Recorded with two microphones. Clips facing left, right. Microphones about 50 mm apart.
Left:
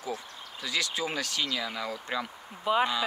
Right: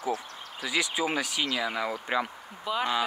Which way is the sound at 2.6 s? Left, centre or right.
Centre.